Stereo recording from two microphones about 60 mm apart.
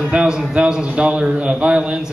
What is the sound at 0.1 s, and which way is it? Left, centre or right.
A man's voice, centre.